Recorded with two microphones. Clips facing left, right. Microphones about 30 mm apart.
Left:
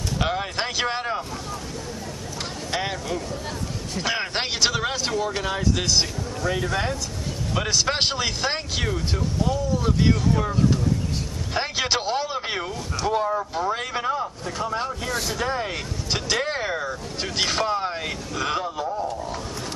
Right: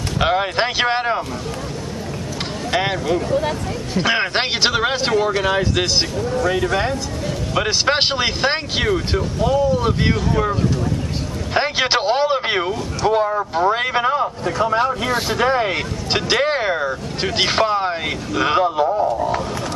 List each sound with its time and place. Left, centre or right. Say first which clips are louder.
0.2 s speech: right 9 dB; right
2.7 s speech: right 8 dB; right